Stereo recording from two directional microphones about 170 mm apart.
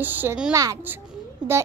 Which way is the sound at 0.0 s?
10° right (ahead or behind).